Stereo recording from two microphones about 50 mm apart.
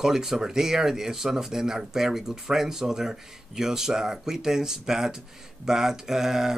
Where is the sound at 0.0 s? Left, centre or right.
Centre.